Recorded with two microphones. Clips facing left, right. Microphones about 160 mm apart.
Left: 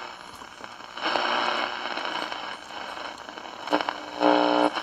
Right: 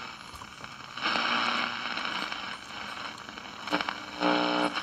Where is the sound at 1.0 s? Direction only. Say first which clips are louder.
Left 6 dB; 45° left (ahead or behind).